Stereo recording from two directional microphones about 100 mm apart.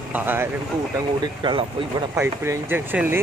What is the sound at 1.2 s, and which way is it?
Speech, 50° right (ahead or behind).